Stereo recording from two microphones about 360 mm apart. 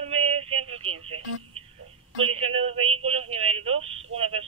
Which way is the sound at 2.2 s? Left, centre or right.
Centre.